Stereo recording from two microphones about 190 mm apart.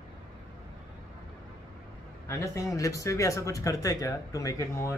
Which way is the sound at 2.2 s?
15° left (ahead or behind).